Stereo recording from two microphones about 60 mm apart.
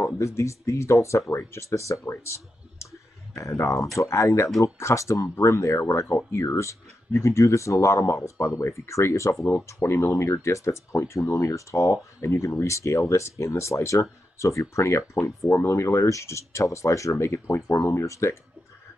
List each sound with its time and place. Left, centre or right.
0.2 s speech: left
17.8 s speech: left